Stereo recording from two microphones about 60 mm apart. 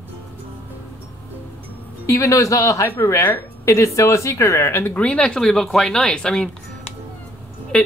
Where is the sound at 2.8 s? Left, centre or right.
Left.